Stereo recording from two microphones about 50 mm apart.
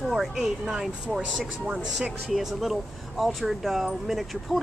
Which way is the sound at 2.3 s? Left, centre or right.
Centre.